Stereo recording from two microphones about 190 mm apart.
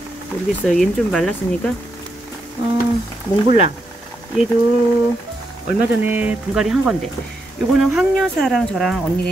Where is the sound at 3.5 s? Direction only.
30° right (ahead or behind).